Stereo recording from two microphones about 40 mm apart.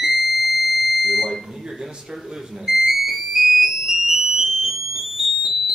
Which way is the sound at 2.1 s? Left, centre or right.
Centre.